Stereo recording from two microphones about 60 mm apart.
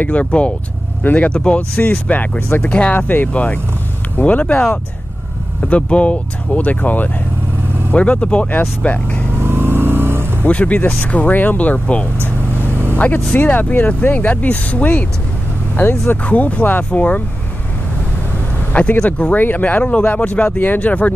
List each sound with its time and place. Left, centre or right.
0.0 s speech: left
9.4 s vehicle: right
10.4 s speech: left
18.7 s speech: left